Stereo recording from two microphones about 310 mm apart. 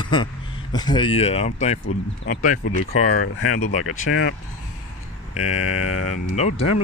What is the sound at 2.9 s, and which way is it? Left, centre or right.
Speech, left.